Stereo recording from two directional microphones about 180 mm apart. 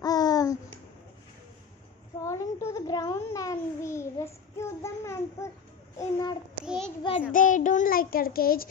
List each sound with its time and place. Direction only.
0.0 s babbling: 20° left (ahead or behind)
2.2 s babbling: 15° left (ahead or behind)
5.9 s a child's voice: 20° left (ahead or behind)
6.6 s a sound: 5° right (ahead or behind)
7.3 s child singing: 45° left (ahead or behind)